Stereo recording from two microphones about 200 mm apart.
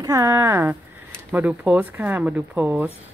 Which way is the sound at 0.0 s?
15° right (ahead or behind).